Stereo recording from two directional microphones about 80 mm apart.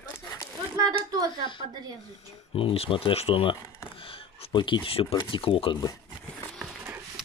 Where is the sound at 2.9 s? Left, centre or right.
Left.